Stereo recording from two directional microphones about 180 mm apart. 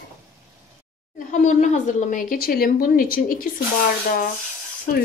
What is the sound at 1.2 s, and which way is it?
A woman's voice, 45° left (ahead or behind).